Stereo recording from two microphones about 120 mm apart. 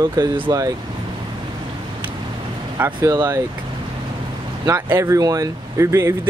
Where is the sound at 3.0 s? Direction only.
20° right (ahead or behind).